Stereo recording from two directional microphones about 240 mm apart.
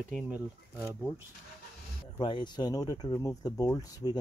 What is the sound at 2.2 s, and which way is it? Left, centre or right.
Speech, centre.